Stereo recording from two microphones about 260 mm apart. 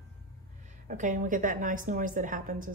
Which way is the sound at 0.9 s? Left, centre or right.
Right.